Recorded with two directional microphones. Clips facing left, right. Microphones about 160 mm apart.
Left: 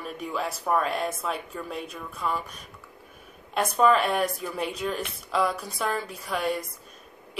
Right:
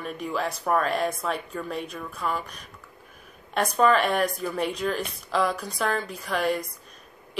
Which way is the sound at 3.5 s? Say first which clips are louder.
Even; 5° left (ahead or behind).